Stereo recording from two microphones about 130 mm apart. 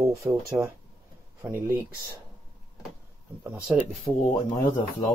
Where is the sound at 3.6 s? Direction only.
10° right (ahead or behind).